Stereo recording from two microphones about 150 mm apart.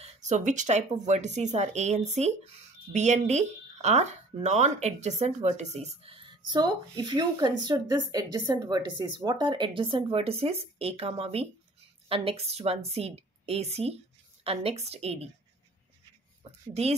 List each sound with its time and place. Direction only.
0.0 s speech: 50° right (ahead or behind)